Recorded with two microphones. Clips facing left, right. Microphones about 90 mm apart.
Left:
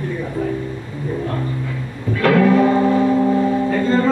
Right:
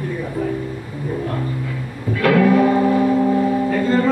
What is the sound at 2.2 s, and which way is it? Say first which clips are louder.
Music: left 1 dB; 35° left (ahead or behind).